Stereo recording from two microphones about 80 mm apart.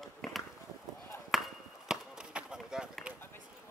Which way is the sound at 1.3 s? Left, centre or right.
Centre.